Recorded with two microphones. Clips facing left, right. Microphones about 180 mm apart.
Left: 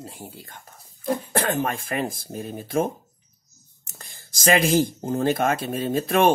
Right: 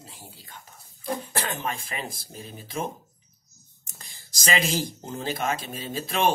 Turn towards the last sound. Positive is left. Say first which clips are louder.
# left 7 dB
turn(degrees=50)  # may be behind; listen again after turning